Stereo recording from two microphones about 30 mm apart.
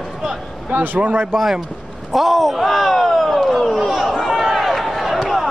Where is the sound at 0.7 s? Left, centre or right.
Right.